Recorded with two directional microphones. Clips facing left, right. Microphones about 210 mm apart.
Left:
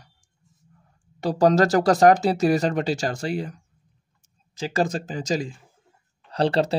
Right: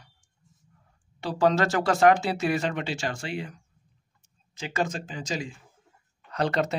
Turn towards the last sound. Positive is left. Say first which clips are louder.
# left 5 dB
turn(degrees=30)  # may be behind; listen again after turning